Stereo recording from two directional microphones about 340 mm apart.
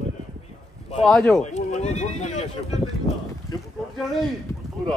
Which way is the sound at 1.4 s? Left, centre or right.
Left.